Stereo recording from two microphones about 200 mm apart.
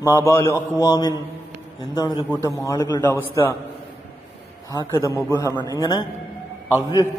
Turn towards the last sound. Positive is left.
turn(degrees=20)  # may be behind; listen again after turning